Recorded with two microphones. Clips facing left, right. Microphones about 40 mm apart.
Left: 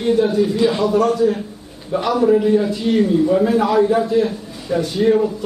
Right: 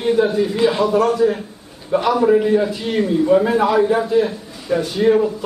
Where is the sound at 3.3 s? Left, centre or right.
Centre.